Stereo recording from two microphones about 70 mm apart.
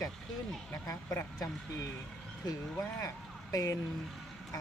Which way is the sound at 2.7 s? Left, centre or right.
Left.